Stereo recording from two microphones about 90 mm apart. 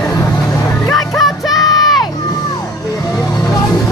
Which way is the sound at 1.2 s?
Centre (ahead or behind).